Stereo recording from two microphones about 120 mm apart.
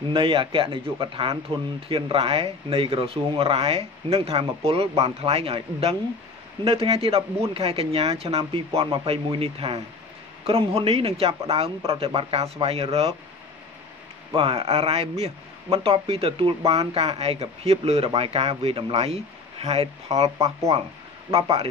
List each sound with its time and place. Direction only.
0.1 s speech: 50° right (ahead or behind)
14.3 s speech: 50° right (ahead or behind)